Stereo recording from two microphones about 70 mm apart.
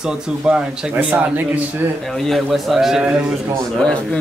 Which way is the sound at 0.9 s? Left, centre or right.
Right.